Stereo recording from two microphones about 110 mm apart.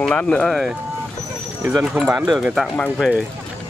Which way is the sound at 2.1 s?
5° right (ahead or behind).